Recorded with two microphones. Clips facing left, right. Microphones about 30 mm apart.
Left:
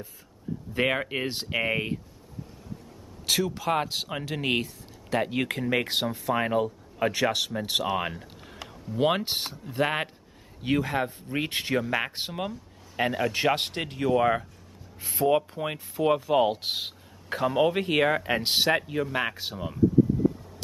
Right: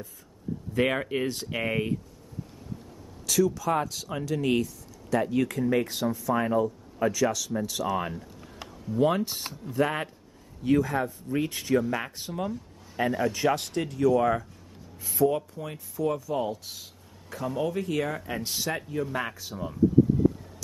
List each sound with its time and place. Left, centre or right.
0.8 s speech: centre
1.2 s speech: left
1.5 s speech: left
3.3 s speech: left
12.4 s speech: left
13.6 s speech: left